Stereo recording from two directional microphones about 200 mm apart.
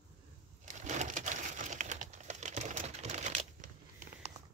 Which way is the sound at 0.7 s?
35° right (ahead or behind).